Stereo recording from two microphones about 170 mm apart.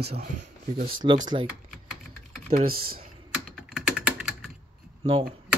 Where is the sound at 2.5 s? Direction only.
60° right (ahead or behind).